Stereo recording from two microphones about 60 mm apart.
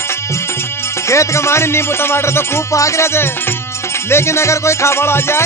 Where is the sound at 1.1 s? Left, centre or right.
Left.